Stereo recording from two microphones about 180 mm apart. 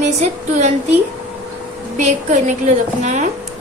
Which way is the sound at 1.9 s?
45° right (ahead or behind).